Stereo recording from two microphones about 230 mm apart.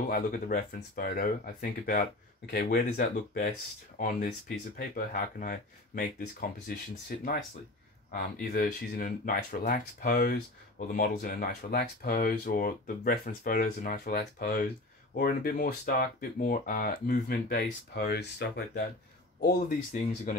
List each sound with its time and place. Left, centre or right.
0.1 s speech: left
4.7 s speech: left
8.1 s speech: left